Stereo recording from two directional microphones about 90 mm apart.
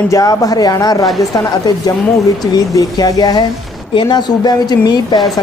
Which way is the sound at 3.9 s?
60° left (ahead or behind).